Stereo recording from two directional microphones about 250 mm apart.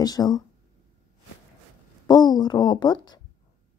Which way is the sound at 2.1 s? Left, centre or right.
Centre.